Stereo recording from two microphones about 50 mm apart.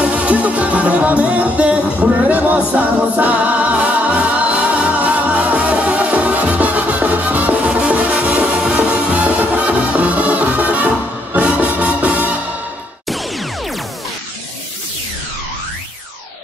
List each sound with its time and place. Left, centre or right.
0.0 s music: right
2.7 s a capella: right
8.5 s music: right